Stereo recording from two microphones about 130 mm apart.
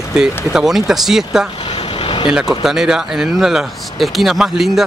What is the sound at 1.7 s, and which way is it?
Vehicle, 40° left (ahead or behind).